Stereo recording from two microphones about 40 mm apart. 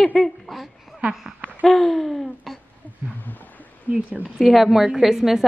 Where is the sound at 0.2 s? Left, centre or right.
Centre.